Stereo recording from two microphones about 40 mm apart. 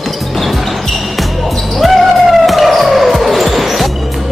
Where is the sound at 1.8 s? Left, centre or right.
Centre.